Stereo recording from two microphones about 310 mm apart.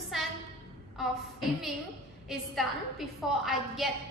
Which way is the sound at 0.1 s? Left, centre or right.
Centre.